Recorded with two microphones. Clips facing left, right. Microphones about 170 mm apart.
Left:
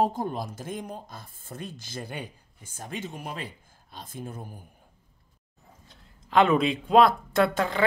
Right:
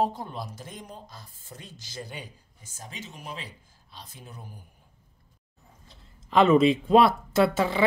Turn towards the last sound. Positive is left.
turn(degrees=-5)  # may be behind; listen again after turning